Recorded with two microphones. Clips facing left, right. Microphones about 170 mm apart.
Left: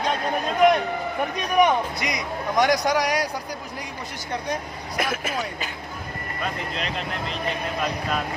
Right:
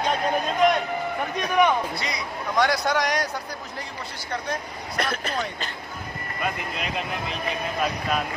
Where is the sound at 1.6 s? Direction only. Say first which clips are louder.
Left 2 dB; 15° left (ahead or behind).